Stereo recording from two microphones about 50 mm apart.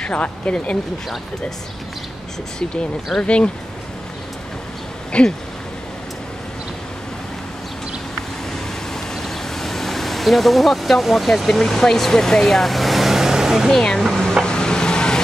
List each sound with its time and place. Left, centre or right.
0.0 s speech: left
3.2 s speech: left
5.1 s speech: left
8.9 s vehicle: centre
13.7 s speech: centre
14.4 s vehicle: centre